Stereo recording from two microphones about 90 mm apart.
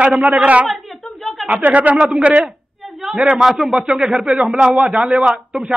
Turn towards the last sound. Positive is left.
turn(degrees=-5)  # may be behind; listen again after turning